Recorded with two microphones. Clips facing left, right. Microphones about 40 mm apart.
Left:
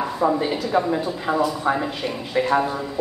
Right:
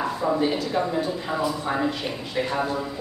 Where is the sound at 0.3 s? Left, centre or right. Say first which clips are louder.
Left 2 dB; centre.